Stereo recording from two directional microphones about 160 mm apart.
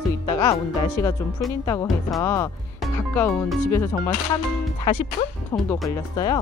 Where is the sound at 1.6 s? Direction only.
20° left (ahead or behind).